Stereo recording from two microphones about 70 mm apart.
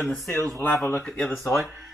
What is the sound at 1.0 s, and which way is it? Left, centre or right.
Speech, centre.